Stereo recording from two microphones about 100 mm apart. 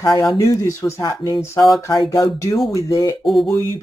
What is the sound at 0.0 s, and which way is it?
Speech, 35° left (ahead or behind).